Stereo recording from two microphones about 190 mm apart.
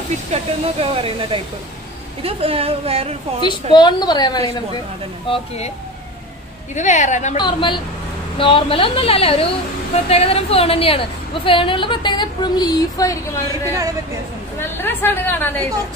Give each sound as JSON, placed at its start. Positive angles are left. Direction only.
{"t": 0.3, "sound": "a woman's voice", "side_deg": -30}
{"t": 3.7, "sound": "a woman's voice", "side_deg": 20}
{"t": 6.7, "sound": "a woman's voice", "side_deg": 40}
{"t": 7.3, "sound": "a woman's voice", "side_deg": 25}
{"t": 13.5, "sound": "a woman's voice", "side_deg": -15}
{"t": 14.6, "sound": "a woman's voice", "side_deg": 10}